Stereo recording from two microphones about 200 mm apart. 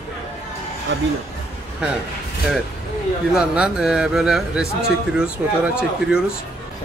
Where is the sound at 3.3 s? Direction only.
5° right (ahead or behind).